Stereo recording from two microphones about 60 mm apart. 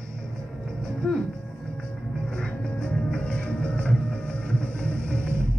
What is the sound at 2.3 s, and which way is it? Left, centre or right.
Music, centre.